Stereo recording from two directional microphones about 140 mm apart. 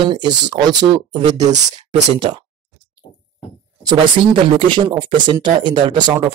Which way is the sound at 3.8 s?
25° right (ahead or behind).